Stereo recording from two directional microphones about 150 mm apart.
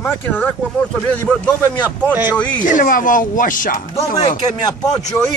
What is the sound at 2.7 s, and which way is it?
Speech, 65° left (ahead or behind).